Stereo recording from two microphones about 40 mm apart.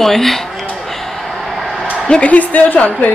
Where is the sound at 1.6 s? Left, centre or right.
Centre.